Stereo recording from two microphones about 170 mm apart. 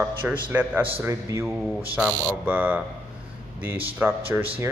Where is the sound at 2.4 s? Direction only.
10° right (ahead or behind).